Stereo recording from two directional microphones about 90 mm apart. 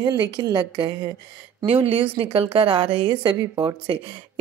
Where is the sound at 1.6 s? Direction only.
90° right; by 3.9 s 50° right (ahead or behind).